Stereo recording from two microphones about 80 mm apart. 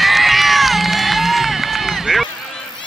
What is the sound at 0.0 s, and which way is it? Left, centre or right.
Run, centre.